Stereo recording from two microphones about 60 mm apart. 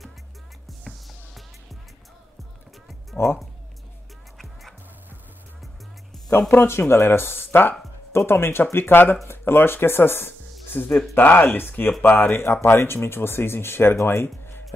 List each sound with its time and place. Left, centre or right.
3.2 s speech: left
6.5 s speech: left